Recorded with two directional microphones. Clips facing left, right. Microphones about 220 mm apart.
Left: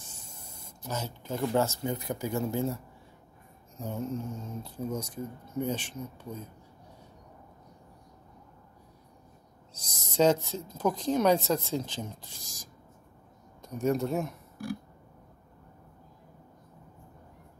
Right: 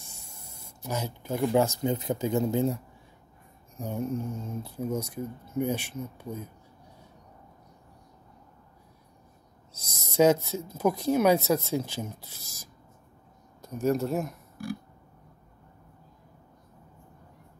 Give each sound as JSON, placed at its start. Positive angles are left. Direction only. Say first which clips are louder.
{"t": 0.6, "sound": "speech", "louder": "right 3 dB", "side_deg": -10}
{"t": 9.8, "sound": "speech", "louder": "right 3 dB", "side_deg": -10}